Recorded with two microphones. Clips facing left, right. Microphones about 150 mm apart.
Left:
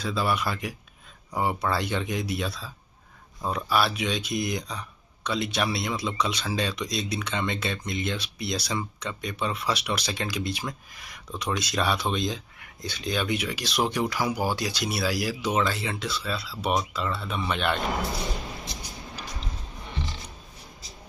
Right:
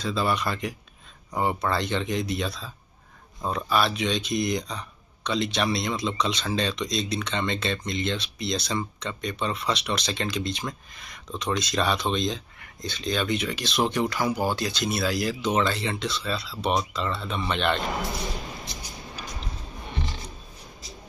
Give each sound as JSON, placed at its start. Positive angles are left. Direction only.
{"t": 0.0, "sound": "speech", "side_deg": 5}